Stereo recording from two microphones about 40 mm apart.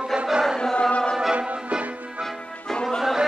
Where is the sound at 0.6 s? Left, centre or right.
Left.